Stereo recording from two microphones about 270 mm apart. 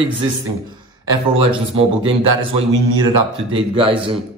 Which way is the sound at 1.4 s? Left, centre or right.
Right.